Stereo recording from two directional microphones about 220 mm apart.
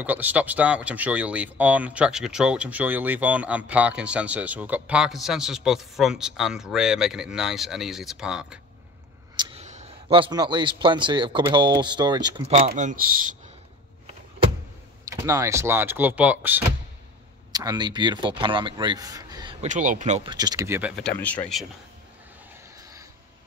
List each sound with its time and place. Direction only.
0.0 s speech: 5° right (ahead or behind)
9.4 s a man's voice: 25° right (ahead or behind)
15.0 s speech: 15° right (ahead or behind)
19.6 s speech: 35° right (ahead or behind)
20.2 s speech: 15° right (ahead or behind); by 21.6 s 5° left (ahead or behind)